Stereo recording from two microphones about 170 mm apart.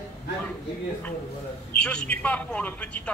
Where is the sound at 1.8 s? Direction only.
5° left (ahead or behind).